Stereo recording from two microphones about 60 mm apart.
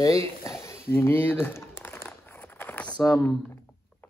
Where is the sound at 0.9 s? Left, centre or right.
Left.